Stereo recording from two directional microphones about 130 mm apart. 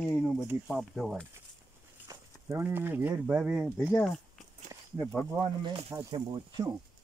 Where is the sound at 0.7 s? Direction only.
Centre (ahead or behind).